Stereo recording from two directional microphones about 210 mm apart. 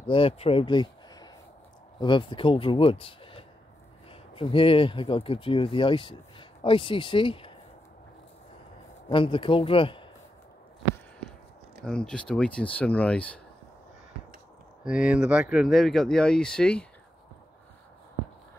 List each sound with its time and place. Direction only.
0.0 s a man's voice: 25° left (ahead or behind)
9.1 s speech: 25° left (ahead or behind)
11.8 s speech: 5° left (ahead or behind)
14.8 s speech: 5° right (ahead or behind)